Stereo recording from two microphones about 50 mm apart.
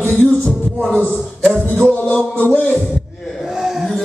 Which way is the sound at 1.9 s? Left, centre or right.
Left.